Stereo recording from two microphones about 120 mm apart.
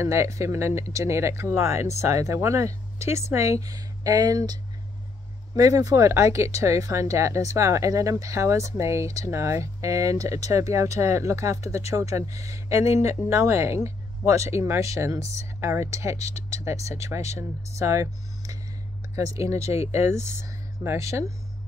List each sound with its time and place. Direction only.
0.0 s speech: 25° right (ahead or behind)
5.6 s speech: 30° right (ahead or behind)